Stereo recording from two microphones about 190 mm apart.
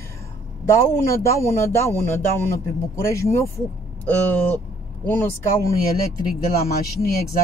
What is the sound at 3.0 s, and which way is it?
Speech, 15° left (ahead or behind).